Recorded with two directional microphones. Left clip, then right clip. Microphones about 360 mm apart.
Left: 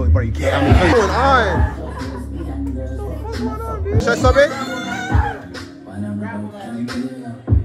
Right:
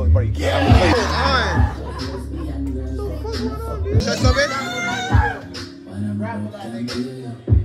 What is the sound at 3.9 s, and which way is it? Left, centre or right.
Music, centre.